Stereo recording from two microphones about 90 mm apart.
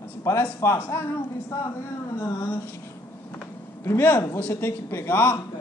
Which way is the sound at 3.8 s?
25° left (ahead or behind).